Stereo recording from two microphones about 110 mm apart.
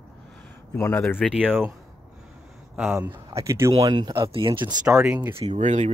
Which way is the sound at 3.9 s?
40° right (ahead or behind).